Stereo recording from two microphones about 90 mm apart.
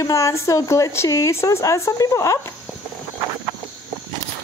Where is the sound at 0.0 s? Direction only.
35° left (ahead or behind).